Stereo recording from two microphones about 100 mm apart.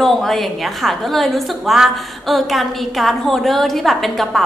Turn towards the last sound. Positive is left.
turn(degrees=0)  # may be behind; listen again after turning